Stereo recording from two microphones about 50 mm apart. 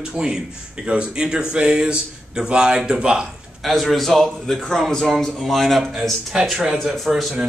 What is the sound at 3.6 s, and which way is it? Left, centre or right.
Speech, centre.